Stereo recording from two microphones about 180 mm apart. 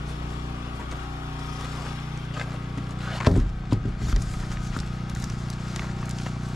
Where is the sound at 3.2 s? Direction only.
Centre (ahead or behind).